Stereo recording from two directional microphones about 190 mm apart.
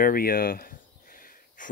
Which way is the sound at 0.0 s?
50° left (ahead or behind).